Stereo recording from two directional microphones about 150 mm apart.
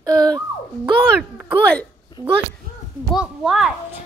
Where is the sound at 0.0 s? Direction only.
25° right (ahead or behind).